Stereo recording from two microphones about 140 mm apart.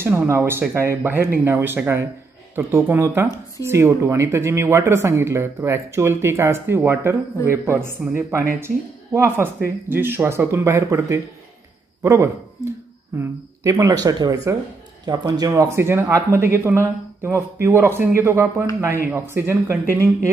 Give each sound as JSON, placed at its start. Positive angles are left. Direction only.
{"t": 0.0, "sound": "speech", "side_deg": -15}